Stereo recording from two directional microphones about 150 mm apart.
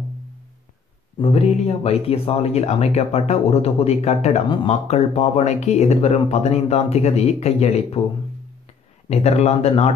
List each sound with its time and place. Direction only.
1.1 s speech: 40° left (ahead or behind)
9.1 s speech: 45° left (ahead or behind)